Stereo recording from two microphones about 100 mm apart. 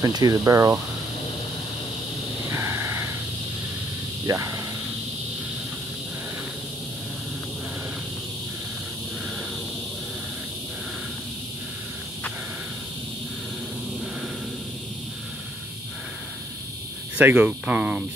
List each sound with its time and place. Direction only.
0.0 s speech: 40° right (ahead or behind)
2.5 s a sound: 25° right (ahead or behind)
4.3 s speech: 30° right (ahead or behind)
17.2 s speech: 15° right (ahead or behind)